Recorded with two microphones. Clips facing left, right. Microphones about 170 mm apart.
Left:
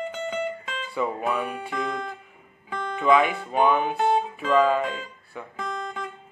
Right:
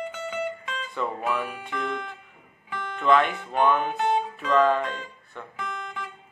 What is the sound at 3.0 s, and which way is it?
Speech, 5° left (ahead or behind).